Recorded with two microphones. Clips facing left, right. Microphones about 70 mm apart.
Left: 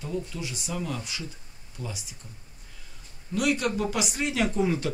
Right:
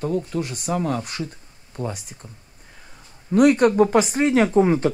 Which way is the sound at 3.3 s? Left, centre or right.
Right.